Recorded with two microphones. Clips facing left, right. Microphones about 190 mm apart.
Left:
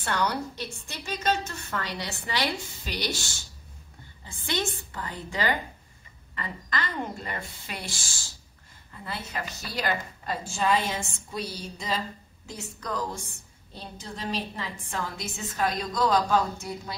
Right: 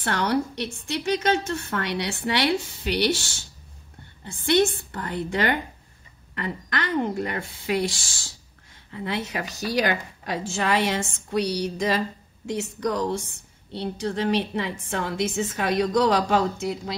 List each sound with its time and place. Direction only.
0.3 s a woman's voice: 70° right (ahead or behind)
8.9 s a woman's voice: 80° right